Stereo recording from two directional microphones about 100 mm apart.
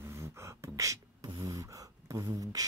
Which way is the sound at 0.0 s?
30° right (ahead or behind).